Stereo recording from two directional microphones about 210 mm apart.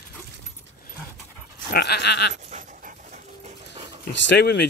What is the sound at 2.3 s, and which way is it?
Dog, 35° right (ahead or behind).